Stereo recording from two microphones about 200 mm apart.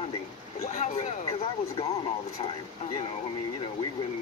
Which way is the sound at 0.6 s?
35° left (ahead or behind).